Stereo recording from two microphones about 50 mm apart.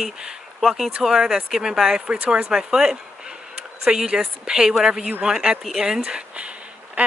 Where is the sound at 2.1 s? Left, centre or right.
Right.